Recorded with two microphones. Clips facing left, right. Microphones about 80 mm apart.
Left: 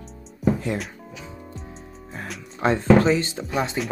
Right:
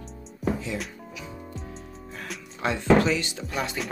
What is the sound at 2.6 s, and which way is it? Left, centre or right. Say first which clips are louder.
Speech: left 4 dB; left.